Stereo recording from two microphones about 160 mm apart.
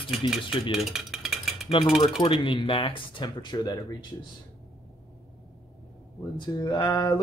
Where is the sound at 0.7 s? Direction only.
Centre (ahead or behind).